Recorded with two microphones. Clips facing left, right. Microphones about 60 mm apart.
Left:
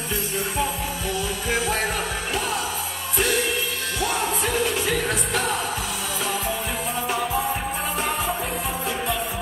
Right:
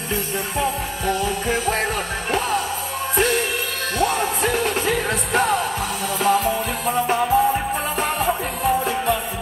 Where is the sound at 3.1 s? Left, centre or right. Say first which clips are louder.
Right 3 dB; right.